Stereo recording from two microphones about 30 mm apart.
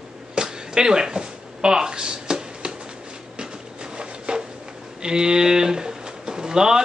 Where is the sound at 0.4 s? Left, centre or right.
Right.